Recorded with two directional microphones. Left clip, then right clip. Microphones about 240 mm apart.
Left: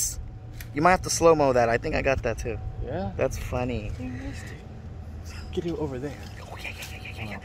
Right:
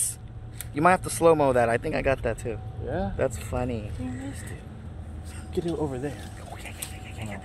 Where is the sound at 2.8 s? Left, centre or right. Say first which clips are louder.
Right 2 dB; right.